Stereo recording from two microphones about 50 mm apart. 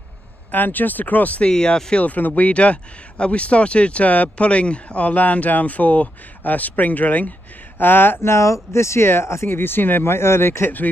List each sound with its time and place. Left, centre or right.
0.5 s speech: left
1.5 s speech: centre
2.0 s speech: left
8.2 s speech: left
9.5 s speech: left